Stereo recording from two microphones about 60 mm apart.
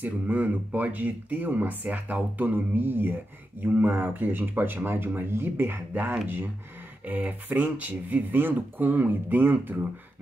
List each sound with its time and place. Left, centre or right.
0.0 s speech: right